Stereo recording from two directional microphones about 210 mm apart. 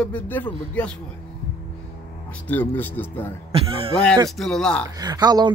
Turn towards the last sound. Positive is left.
turn(degrees=-20)  # may be behind; listen again after turning